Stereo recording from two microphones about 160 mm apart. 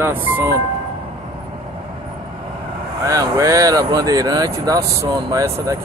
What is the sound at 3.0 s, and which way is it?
Speech, 20° right (ahead or behind).